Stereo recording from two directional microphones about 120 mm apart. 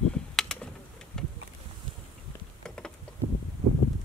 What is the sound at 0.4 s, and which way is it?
Typing, 5° left (ahead or behind).